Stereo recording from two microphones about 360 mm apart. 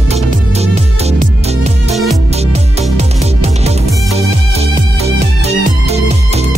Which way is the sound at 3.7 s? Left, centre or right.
Centre.